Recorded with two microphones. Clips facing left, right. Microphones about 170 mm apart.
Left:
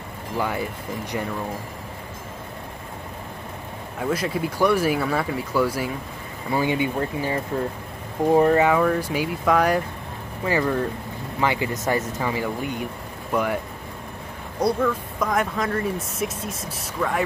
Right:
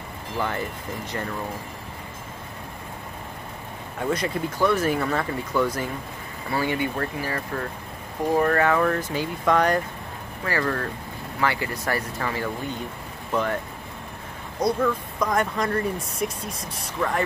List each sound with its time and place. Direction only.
0.4 s speech: 10° left (ahead or behind)
4.0 s speech: 5° left (ahead or behind)
6.5 s speech: 15° left (ahead or behind)
14.6 s speech: 5° left (ahead or behind)